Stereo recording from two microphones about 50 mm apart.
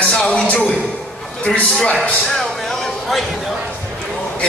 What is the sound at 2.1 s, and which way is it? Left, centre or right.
Speech, centre.